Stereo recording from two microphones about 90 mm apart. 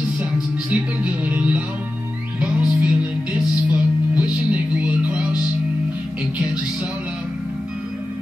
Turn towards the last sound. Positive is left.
turn(degrees=-15)  # may be behind; listen again after turning